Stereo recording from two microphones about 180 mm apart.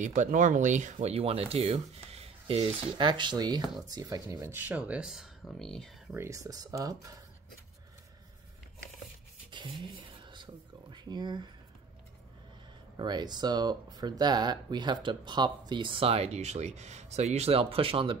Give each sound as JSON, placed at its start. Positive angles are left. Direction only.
{"t": 0.0, "sound": "speech", "side_deg": -45}
{"t": 6.1, "sound": "speech", "side_deg": -15}
{"t": 9.5, "sound": "a sound", "side_deg": -25}
{"t": 12.9, "sound": "speech", "side_deg": -25}